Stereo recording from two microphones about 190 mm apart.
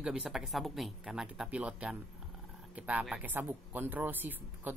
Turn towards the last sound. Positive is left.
turn(degrees=-10)  # may be behind; listen again after turning